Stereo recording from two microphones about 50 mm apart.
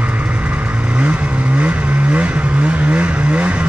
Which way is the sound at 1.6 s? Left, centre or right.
Right.